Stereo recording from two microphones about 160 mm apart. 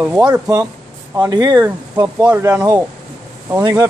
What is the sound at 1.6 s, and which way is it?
Speech, 10° right (ahead or behind).